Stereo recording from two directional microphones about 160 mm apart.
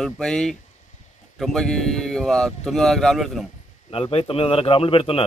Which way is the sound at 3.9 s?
35° left (ahead or behind).